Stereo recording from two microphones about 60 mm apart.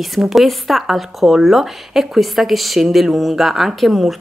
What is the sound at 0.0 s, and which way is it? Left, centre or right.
Speech, centre.